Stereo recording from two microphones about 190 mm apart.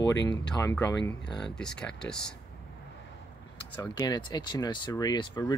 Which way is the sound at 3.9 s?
20° left (ahead or behind).